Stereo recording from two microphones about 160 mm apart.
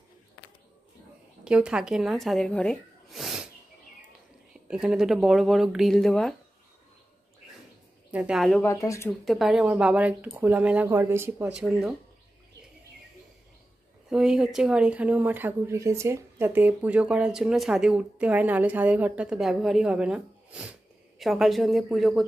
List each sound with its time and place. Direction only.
1.4 s speech: 5° right (ahead or behind)
4.6 s speech: 5° right (ahead or behind)
8.1 s speech: 5° right (ahead or behind)
8.6 s speech: 15° left (ahead or behind)
9.2 s speech: centre (ahead or behind)
14.1 s speech: 5° right (ahead or behind)